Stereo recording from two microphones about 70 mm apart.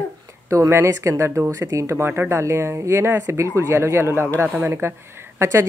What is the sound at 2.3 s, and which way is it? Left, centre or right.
Speech, right.